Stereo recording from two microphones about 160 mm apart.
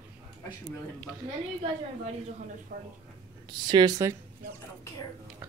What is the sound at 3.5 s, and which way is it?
Speech, 30° right (ahead or behind).